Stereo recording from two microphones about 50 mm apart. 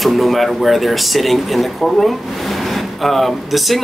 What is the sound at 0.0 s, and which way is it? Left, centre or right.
Speech, centre.